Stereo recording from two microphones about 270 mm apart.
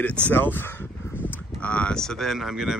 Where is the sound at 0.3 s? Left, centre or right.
Centre.